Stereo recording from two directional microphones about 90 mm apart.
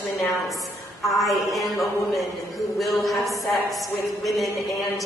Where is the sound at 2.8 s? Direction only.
Centre (ahead or behind).